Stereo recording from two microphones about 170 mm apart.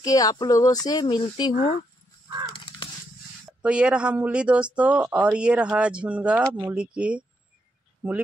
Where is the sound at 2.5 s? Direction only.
30° left (ahead or behind).